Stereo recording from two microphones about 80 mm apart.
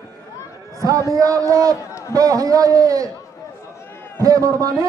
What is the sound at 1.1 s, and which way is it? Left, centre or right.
Speech, right.